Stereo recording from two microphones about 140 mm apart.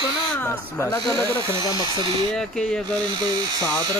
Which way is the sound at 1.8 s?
35° right (ahead or behind).